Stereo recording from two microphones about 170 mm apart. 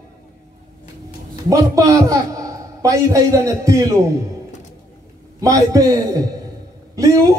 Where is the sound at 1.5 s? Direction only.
20° right (ahead or behind).